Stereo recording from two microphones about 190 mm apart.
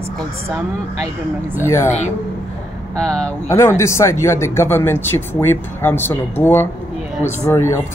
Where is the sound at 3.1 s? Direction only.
5° left (ahead or behind).